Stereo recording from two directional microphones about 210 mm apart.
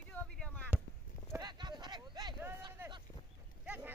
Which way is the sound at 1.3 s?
20° right (ahead or behind).